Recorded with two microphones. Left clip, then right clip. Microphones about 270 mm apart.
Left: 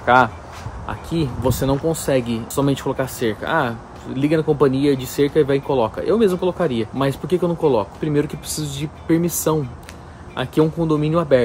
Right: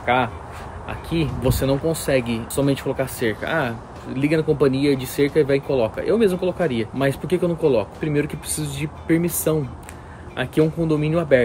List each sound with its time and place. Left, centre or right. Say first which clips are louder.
0.0 s speech: left 6 dB; left